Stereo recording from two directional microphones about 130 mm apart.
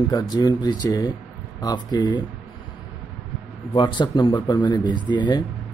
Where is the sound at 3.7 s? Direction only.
35° left (ahead or behind).